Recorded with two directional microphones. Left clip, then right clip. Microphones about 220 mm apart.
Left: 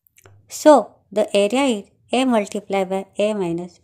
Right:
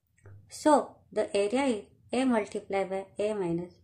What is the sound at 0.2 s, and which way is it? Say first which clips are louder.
Speech: left 12 dB; 35° left (ahead or behind).